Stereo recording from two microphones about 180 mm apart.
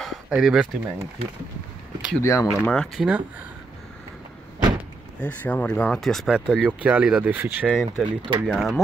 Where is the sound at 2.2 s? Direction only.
15° left (ahead or behind).